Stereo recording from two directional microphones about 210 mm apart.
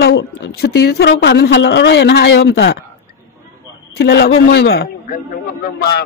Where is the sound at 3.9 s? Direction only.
50° left (ahead or behind).